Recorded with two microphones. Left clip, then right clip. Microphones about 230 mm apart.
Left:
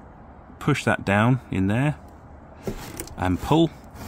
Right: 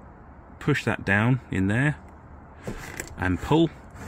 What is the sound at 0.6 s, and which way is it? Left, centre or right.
Speech, centre.